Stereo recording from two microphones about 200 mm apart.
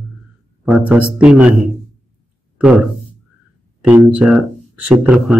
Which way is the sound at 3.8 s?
5° right (ahead or behind).